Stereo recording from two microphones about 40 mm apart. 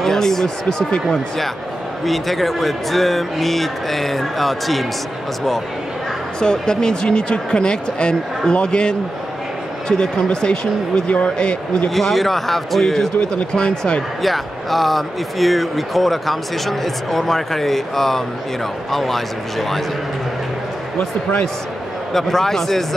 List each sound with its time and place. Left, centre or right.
0.0 s speech: centre
2.0 s speech: centre
6.4 s speech: centre
11.9 s speech: centre
13.2 s speech: left
14.2 s speech: centre
22.1 s speech: centre